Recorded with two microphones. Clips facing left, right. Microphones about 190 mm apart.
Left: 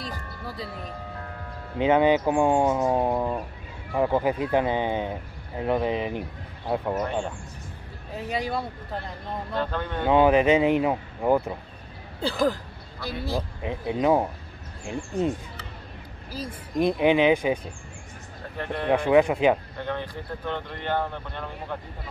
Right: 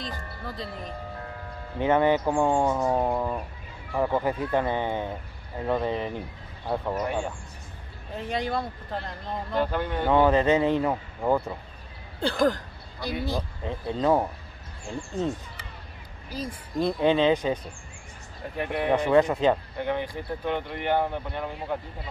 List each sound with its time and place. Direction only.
0.0 s speech: 10° left (ahead or behind)
1.8 s speech: 15° left (ahead or behind)
8.1 s speech: 10° left (ahead or behind)
9.5 s speech: 10° right (ahead or behind)
10.0 s speech: 15° left (ahead or behind)
12.2 s speech: 5° left (ahead or behind)
13.6 s speech: 15° left (ahead or behind)
16.7 s speech: 15° left (ahead or behind)
18.6 s speech: 10° right (ahead or behind)
19.0 s speech: 15° left (ahead or behind)
19.8 s speech: 15° right (ahead or behind)